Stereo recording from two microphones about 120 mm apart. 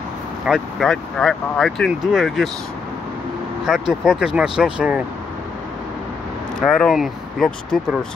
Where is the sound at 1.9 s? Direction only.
5° right (ahead or behind).